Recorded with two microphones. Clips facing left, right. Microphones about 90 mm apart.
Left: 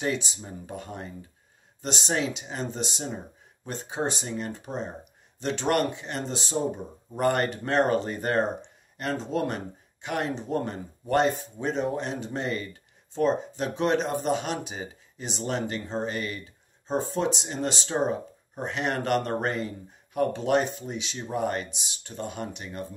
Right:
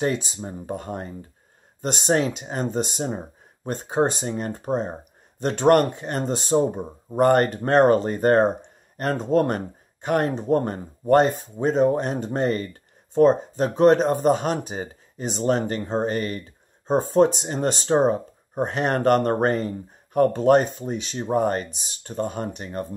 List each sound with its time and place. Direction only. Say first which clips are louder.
0.0 s speech: right 5 dB; 40° right (ahead or behind)